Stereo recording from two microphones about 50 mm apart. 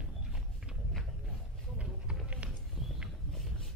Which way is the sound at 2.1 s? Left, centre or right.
Centre.